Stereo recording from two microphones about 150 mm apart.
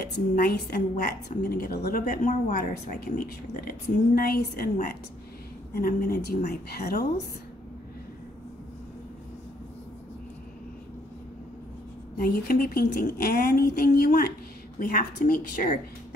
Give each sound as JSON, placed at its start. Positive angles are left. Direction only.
{"t": 0.0, "sound": "a woman's voice", "side_deg": 90}
{"t": 12.2, "sound": "a woman's voice", "side_deg": 80}
{"t": 14.8, "sound": "a woman's voice", "side_deg": 75}